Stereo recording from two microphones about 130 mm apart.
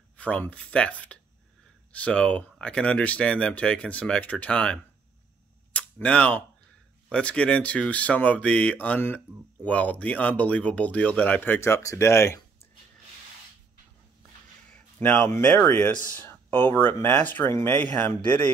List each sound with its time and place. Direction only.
0.2 s speech: 10° left (ahead or behind)
14.7 s speech: 10° left (ahead or behind)